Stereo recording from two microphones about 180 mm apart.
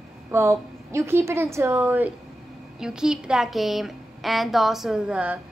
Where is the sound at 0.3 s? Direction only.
15° right (ahead or behind).